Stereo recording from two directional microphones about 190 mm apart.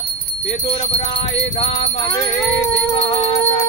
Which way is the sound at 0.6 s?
30° left (ahead or behind).